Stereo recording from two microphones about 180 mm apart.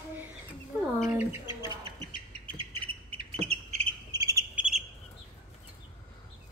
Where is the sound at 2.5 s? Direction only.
30° right (ahead or behind).